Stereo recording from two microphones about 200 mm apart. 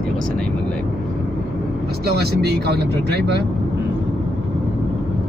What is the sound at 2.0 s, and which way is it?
Speech, 55° right (ahead or behind).